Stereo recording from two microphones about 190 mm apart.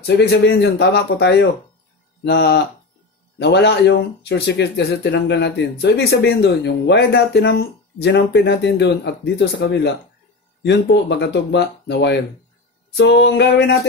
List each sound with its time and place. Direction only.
0.0 s speech: 60° left (ahead or behind)